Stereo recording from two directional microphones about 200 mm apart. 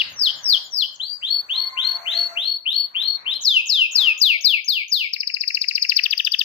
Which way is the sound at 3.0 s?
25° left (ahead or behind).